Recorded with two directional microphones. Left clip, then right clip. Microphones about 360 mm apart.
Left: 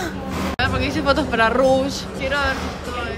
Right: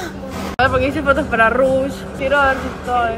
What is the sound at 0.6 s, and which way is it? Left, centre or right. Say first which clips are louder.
Speech: right 7 dB; centre.